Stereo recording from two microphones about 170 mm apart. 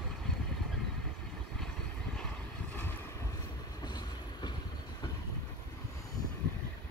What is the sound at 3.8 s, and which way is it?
Vehicle, 25° left (ahead or behind).